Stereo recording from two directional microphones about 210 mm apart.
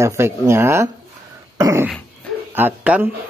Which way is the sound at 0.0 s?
15° right (ahead or behind).